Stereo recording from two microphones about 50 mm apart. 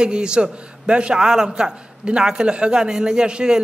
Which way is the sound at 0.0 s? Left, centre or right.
Centre.